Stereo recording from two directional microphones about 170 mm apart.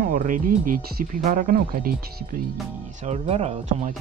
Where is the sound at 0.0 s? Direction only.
55° right (ahead or behind).